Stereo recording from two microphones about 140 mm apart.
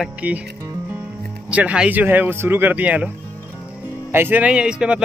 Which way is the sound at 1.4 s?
10° right (ahead or behind).